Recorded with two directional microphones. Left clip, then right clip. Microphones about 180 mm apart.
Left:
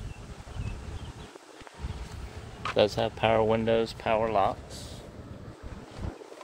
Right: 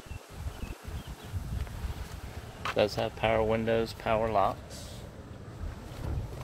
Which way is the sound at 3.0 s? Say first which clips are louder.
Left 3 dB; 30° left (ahead or behind).